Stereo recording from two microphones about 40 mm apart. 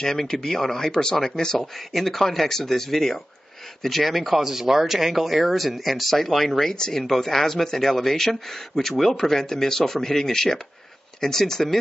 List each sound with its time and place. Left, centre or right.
0.0 s a man's voice: centre
1.9 s a man's voice: centre
6.7 s a man's voice: centre
7.0 s a man's voice: centre